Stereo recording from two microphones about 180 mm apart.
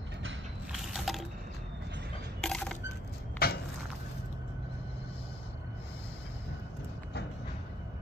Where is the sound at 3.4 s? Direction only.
55° left (ahead or behind).